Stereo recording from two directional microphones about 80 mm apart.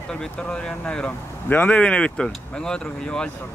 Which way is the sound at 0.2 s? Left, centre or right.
Centre.